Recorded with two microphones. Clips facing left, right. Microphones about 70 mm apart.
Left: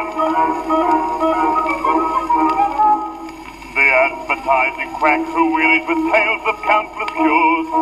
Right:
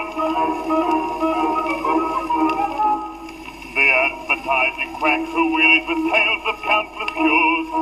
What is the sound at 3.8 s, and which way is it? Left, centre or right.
A man's voice, left.